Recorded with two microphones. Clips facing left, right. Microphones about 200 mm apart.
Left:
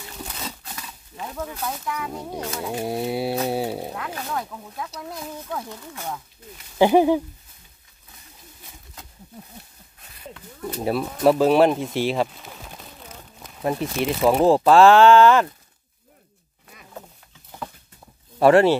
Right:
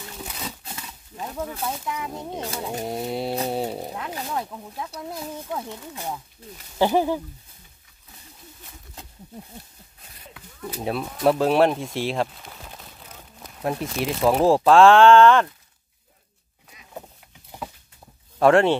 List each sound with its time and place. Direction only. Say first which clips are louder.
0.2 s a sound: left 1 dB; centre (ahead or behind)
1.5 s speech: even; 25° right (ahead or behind)
2.8 s speech: left 3 dB; 5° left (ahead or behind)
3.4 s a sound: left 2 dB; 5° left (ahead or behind)
3.9 s speech: even; 20° right (ahead or behind)
6.8 s speech: left 5 dB; 15° left (ahead or behind)
10.3 s speech: left 3 dB; 5° right (ahead or behind)
17.5 s patter: even; 15° right (ahead or behind)
18.4 s speech: left 2 dB; 5° left (ahead or behind)